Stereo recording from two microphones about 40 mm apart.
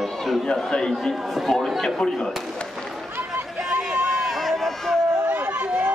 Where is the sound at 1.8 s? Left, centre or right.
Centre.